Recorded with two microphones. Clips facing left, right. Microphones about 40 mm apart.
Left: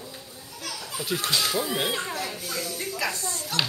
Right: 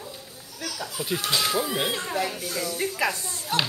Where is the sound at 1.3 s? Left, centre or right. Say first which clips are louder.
Right 1 dB; centre.